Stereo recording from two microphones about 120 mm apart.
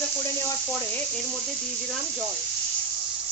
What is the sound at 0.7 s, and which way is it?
Speech, 10° left (ahead or behind).